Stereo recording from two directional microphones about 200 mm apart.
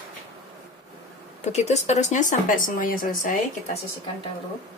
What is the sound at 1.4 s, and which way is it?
Speech, 35° left (ahead or behind).